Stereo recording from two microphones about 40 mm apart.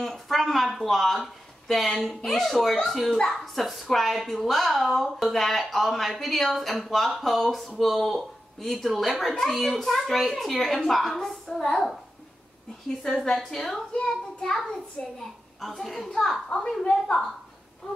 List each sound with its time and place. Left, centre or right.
0.0 s a sound: centre
0.7 s a child's voice: centre
11.4 s a woman's voice: centre
11.7 s a child's voice: centre
15.0 s a woman's voice: centre